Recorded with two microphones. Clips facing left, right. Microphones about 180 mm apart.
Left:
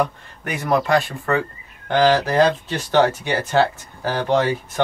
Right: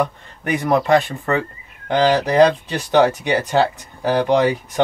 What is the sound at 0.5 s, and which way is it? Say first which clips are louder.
Speech: right 3 dB; 20° right (ahead or behind).